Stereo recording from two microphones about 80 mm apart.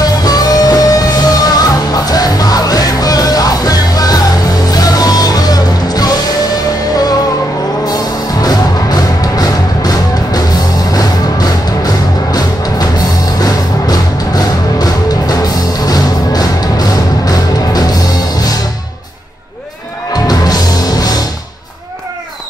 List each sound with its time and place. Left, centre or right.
0.0 s music: left
7.8 s music: left
20.1 s music: left